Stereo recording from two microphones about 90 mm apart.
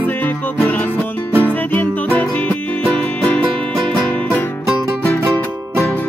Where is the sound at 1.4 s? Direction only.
20° left (ahead or behind).